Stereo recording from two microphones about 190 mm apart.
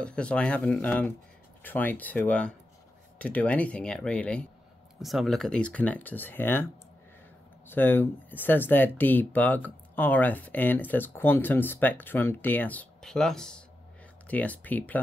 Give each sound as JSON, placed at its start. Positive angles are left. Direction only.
{"t": 0.0, "sound": "speech", "side_deg": 5}